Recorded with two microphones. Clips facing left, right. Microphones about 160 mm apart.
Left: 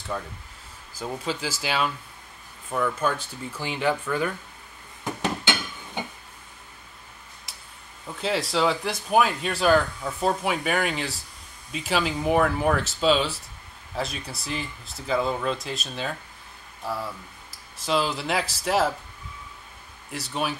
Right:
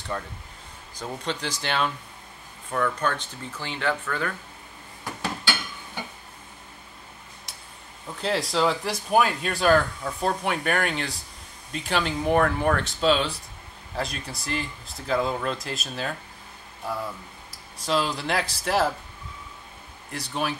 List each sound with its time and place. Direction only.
0.1 s speech: centre (ahead or behind)
5.0 s a sound: 20° left (ahead or behind)
8.1 s speech: centre (ahead or behind)
17.7 s speech: centre (ahead or behind)
20.1 s speech: centre (ahead or behind)